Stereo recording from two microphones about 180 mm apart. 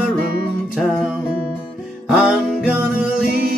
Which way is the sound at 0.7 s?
Centre (ahead or behind).